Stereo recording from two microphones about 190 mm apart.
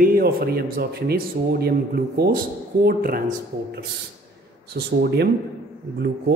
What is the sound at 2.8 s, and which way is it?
Speech, 50° right (ahead or behind).